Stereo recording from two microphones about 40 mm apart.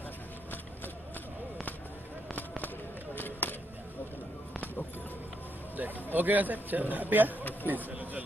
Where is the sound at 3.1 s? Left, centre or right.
Left.